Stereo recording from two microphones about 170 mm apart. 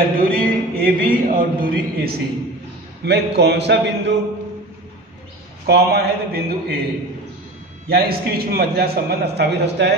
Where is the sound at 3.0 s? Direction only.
75° right (ahead or behind).